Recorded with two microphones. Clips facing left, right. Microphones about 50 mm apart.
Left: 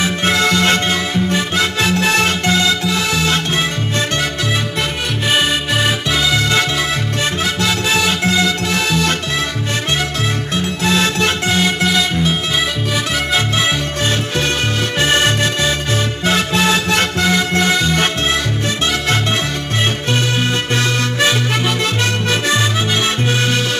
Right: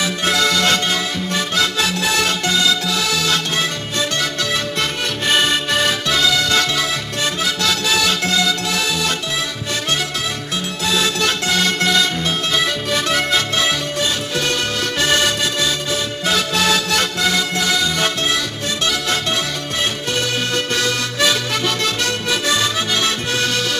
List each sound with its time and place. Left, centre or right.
0.0 s music: left
5.3 s music: centre
7.4 s music: left
8.7 s music: left
10.8 s music: left
15.0 s music: left
20.7 s music: left